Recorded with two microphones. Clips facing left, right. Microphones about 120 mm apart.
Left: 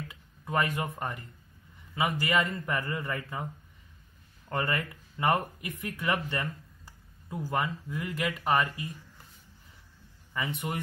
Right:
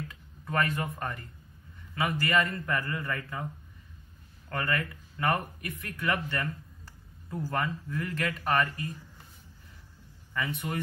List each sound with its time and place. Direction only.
0.1 s a sound: 15° left (ahead or behind)
2.0 s speech: 15° left (ahead or behind)
4.5 s speech: 20° left (ahead or behind)
10.3 s speech: 20° left (ahead or behind)